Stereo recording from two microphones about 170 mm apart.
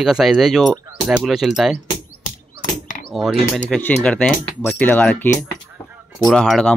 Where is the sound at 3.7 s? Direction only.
10° left (ahead or behind).